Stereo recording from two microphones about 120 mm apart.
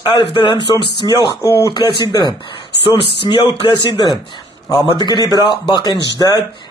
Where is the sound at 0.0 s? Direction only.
45° left (ahead or behind).